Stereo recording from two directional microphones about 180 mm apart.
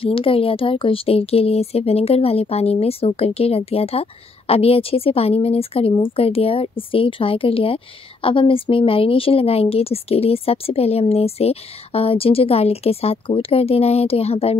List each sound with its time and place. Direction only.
0.0 s a woman's voice: 30° left (ahead or behind)